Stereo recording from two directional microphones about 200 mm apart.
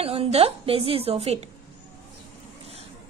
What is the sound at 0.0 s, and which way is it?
A woman's voice, 30° right (ahead or behind).